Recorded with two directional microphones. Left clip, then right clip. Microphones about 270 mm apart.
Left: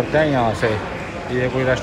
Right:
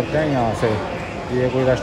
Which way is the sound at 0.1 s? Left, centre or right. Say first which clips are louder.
Left 3 dB; centre.